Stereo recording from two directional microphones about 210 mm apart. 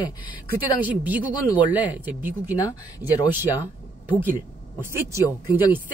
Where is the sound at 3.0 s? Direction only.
25° right (ahead or behind).